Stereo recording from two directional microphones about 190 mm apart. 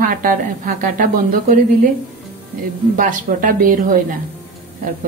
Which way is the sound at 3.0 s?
45° right (ahead or behind).